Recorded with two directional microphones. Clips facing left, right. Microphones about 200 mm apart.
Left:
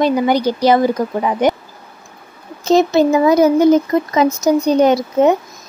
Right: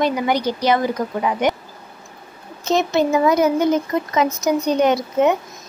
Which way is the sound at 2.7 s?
35° left (ahead or behind).